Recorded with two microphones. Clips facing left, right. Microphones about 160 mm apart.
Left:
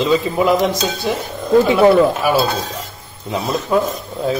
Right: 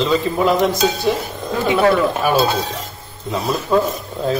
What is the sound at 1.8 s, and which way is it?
Speech, 10° left (ahead or behind).